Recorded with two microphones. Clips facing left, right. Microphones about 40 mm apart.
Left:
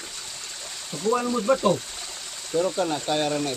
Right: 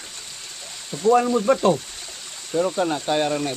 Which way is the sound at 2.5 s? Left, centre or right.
Centre.